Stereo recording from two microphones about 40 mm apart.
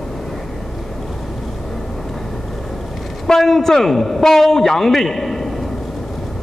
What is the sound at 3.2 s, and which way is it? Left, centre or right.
A man's voice, centre.